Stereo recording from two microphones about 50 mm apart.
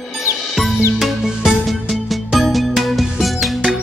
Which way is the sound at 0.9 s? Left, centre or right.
Centre.